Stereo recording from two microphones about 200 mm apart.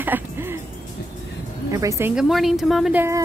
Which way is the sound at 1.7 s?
15° right (ahead or behind).